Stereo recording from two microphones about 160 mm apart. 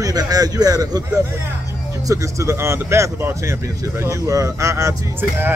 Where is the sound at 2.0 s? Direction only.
20° right (ahead or behind).